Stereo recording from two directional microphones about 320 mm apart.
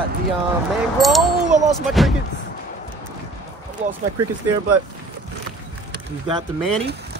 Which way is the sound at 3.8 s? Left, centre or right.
Right.